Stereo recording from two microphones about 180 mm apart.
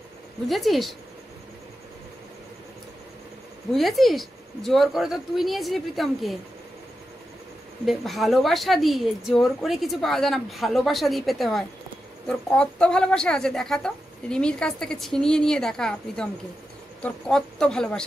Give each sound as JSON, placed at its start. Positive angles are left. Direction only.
{"t": 0.5, "sound": "speech", "side_deg": 0}
{"t": 3.7, "sound": "speech", "side_deg": 0}
{"t": 7.8, "sound": "speech", "side_deg": 0}